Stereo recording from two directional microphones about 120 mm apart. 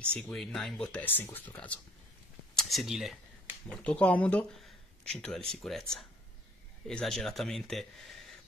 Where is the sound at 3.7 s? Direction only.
10° left (ahead or behind).